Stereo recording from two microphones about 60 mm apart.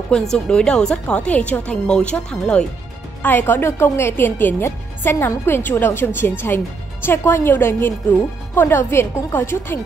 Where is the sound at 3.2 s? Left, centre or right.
Left.